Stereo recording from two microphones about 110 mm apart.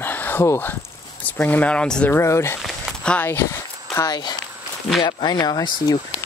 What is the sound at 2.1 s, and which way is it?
Speech, 25° left (ahead or behind).